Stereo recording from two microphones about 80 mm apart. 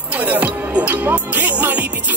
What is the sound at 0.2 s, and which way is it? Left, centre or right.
Music, centre.